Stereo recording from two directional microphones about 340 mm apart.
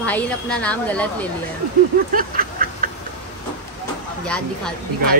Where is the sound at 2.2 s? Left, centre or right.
Right.